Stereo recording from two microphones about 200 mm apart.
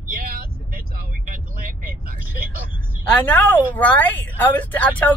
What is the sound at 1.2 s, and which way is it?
Vehicle, 45° right (ahead or behind).